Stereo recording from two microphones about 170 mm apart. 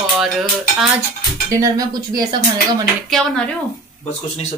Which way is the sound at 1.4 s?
20° right (ahead or behind).